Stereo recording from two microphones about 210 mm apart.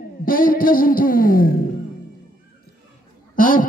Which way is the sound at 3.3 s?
40° left (ahead or behind).